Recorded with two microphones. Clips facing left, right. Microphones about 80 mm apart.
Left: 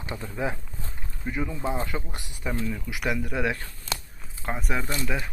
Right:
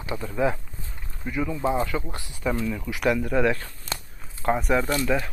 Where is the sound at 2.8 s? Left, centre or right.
Centre.